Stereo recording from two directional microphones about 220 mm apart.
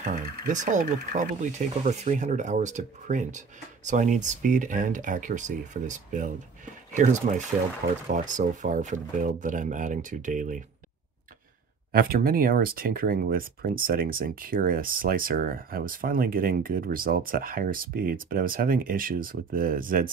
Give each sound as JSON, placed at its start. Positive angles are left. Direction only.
{"t": 0.0, "sound": "speech", "side_deg": -40}
{"t": 11.9, "sound": "speech", "side_deg": -45}